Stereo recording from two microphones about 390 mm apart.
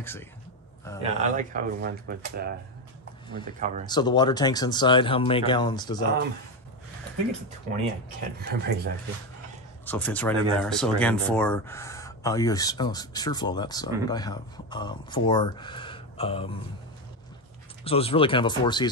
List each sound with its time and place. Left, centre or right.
0.0 s speech: centre
1.0 s speech: centre
3.5 s speech: centre
3.8 s speech: centre
8.4 s speech: right
9.8 s speech: centre
17.8 s speech: centre